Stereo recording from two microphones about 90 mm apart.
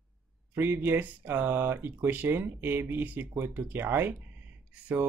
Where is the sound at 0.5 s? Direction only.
25° right (ahead or behind).